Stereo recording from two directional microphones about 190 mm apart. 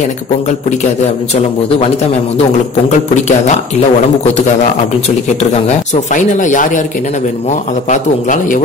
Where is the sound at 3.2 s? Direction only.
35° left (ahead or behind).